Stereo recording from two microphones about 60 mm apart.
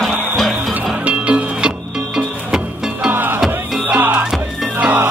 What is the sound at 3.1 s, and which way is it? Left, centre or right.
Music, right.